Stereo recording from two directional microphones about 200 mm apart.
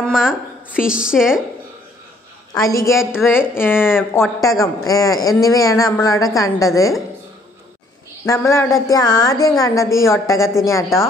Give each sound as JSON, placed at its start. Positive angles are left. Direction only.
{"t": 0.0, "sound": "a woman's voice", "side_deg": -5}
{"t": 2.5, "sound": "a woman's voice", "side_deg": 15}
{"t": 8.3, "sound": "speech", "side_deg": 15}